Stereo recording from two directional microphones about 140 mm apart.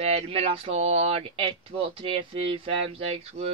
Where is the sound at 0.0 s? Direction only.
45° right (ahead or behind).